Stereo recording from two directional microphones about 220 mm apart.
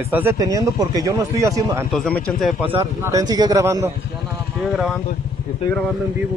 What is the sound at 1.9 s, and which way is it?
Speech, centre (ahead or behind).